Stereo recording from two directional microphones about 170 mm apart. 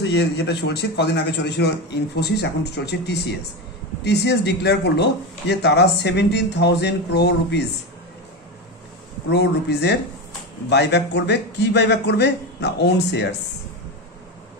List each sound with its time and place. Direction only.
0.0 s a man's voice: 80° left
2.1 s a man's voice: 75° left (ahead or behind)
9.3 s a man's voice: 85° left